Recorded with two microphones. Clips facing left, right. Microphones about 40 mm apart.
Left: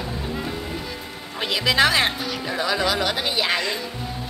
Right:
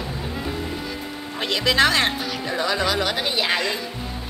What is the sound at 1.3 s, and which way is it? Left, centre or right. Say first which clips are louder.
Speech: even; centre.